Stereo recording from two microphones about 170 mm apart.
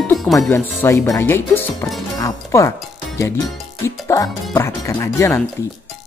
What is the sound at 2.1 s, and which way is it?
Music, 20° left (ahead or behind).